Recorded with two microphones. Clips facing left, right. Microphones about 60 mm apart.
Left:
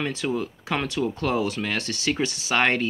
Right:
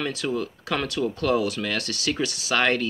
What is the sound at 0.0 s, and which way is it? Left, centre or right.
Speech, left.